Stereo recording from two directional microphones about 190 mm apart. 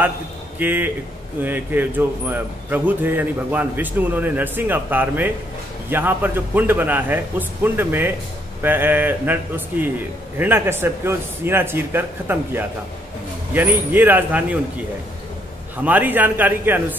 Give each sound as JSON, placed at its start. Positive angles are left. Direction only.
{"t": 0.6, "sound": "speech", "side_deg": -10}
{"t": 15.8, "sound": "speech", "side_deg": -10}